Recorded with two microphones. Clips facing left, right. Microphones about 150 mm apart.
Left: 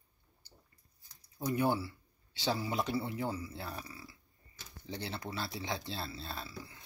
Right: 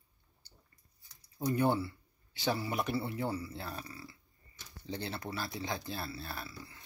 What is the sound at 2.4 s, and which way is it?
Speech, 15° left (ahead or behind).